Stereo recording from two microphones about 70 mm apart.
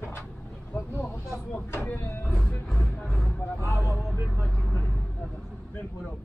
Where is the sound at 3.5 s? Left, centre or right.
Left.